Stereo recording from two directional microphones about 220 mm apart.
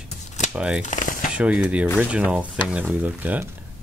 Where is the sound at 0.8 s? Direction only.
35° left (ahead or behind).